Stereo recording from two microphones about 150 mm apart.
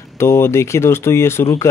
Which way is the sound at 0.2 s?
15° left (ahead or behind).